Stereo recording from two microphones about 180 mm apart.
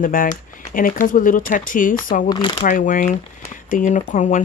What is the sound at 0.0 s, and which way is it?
Speech, 50° left (ahead or behind).